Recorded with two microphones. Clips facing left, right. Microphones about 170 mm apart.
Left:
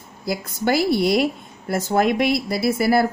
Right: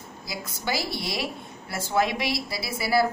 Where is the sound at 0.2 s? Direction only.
55° left (ahead or behind).